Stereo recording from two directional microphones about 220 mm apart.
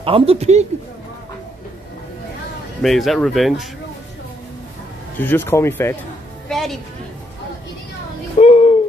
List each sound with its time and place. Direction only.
0.0 s speech: 25° right (ahead or behind)
2.8 s speech: centre (ahead or behind)
5.2 s speech: 10° left (ahead or behind)
6.5 s music: centre (ahead or behind)
8.4 s a sound: 30° left (ahead or behind)